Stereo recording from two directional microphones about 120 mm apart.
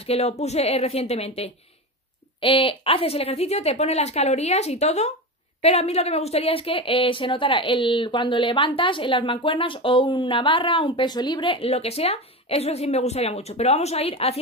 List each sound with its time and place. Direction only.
0.0 s a woman's voice: 60° left (ahead or behind)
2.4 s a woman's voice: 45° left (ahead or behind)